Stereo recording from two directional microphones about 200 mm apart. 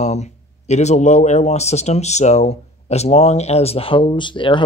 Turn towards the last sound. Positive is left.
turn(degrees=25)  # may be behind; listen again after turning